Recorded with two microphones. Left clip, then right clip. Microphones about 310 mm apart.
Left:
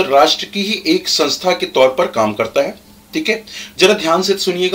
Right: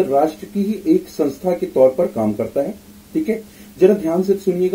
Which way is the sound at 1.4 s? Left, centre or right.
Left.